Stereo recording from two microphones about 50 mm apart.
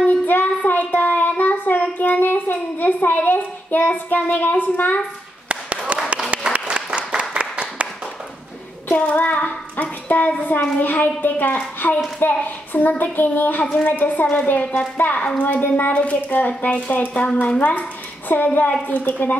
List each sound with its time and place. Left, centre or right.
0.0 s child singing: left
5.5 s a sound: right
6.3 s applause: right
9.0 s a woman's voice: left